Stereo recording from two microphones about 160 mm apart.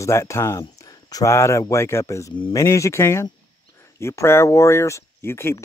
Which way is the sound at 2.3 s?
30° left (ahead or behind).